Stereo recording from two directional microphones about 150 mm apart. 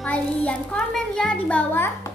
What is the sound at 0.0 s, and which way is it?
A child's voice, 10° left (ahead or behind).